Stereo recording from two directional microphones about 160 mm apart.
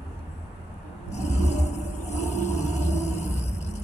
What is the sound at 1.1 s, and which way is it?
Music, 45° left (ahead or behind).